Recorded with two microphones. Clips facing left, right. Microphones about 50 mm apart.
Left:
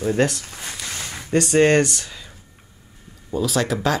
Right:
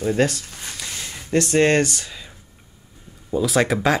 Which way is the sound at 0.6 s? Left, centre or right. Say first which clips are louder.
Left 1 dB; centre.